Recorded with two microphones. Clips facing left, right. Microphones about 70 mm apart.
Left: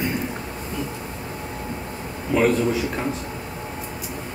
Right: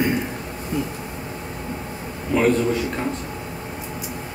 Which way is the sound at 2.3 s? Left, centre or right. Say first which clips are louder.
Right 1 dB; centre.